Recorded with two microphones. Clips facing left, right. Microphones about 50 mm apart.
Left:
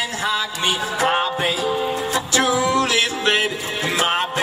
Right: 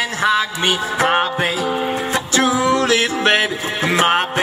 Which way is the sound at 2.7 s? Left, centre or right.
Right.